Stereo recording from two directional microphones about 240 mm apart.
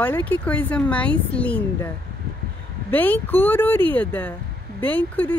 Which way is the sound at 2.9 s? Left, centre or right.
Centre.